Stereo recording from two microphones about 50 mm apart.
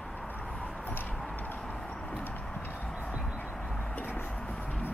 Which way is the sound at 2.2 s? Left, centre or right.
Left.